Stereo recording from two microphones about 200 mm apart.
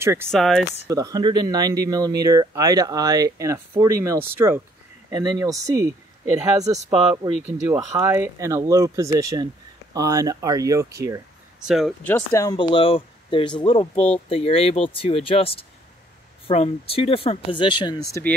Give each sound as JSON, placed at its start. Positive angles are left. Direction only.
{"t": 0.0, "sound": "speech", "side_deg": -10}
{"t": 0.3, "sound": "speech", "side_deg": 0}
{"t": 0.8, "sound": "speech", "side_deg": -15}
{"t": 7.6, "sound": "speech", "side_deg": -10}
{"t": 11.6, "sound": "speech", "side_deg": 0}
{"t": 12.0, "sound": "speech", "side_deg": 10}